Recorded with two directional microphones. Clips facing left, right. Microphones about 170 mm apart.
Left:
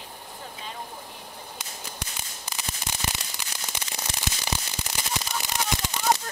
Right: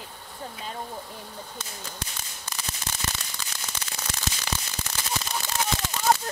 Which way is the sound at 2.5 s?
15° left (ahead or behind).